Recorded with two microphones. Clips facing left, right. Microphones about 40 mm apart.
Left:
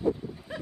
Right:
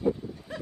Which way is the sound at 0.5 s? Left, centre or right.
Centre.